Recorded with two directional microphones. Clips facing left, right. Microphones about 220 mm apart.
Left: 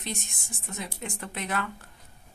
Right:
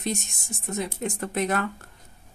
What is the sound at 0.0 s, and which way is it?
A woman's voice, 45° right (ahead or behind).